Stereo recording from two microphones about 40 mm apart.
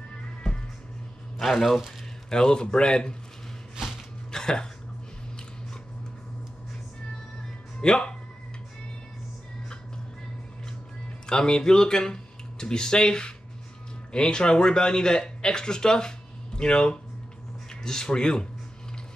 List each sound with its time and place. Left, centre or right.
1.4 s speech: centre
2.2 s a man's voice: centre
4.3 s cough: centre
7.8 s speech: centre
11.2 s a man's voice: centre